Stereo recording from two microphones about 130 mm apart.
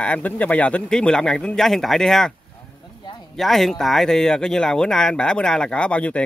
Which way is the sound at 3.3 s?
Centre (ahead or behind).